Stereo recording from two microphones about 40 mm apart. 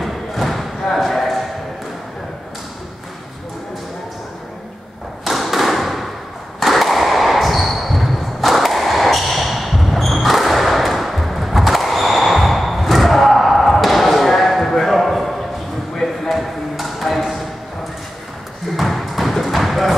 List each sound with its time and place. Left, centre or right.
0.0 s thump: centre
0.9 s a sound: centre
5.2 s thump: centre
6.6 s a sound: centre
16.0 s chop: centre
18.8 s thump: centre